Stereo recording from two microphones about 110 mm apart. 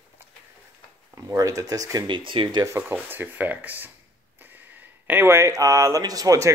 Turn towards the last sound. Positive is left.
turn(degrees=-30)  # may be behind; listen again after turning